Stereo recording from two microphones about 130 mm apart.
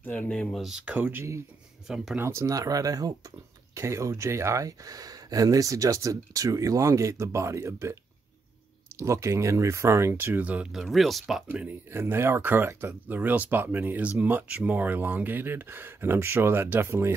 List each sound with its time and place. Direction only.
0.0 s speech: 15° left (ahead or behind)
11.4 s speech: 15° right (ahead or behind)